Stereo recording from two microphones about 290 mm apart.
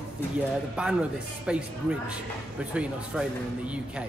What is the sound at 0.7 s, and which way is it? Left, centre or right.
Speech, centre.